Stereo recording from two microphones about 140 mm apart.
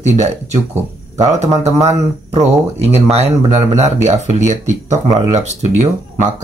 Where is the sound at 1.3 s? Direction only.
50° right (ahead or behind).